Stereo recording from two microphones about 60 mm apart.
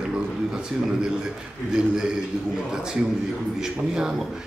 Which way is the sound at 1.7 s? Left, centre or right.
Centre.